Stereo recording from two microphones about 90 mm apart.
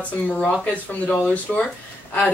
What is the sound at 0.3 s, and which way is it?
Speech, 5° left (ahead or behind).